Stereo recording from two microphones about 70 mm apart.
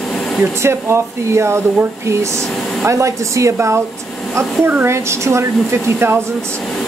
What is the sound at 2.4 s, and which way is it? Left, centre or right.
Speech, centre.